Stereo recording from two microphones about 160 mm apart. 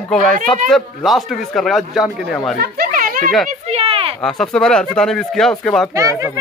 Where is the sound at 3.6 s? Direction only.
40° right (ahead or behind).